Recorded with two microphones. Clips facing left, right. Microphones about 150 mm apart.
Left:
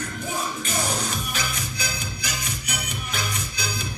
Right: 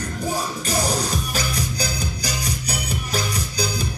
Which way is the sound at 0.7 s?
35° right (ahead or behind).